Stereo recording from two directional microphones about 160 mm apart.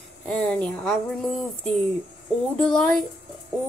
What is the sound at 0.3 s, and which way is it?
Speech, 5° left (ahead or behind).